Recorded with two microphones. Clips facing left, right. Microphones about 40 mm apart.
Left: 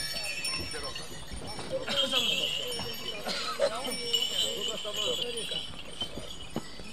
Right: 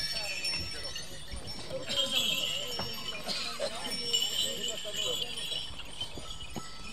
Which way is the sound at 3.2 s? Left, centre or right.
Left.